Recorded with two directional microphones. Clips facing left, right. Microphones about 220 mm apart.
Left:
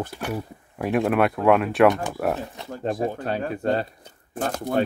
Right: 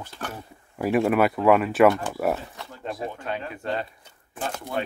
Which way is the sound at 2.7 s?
45° left (ahead or behind).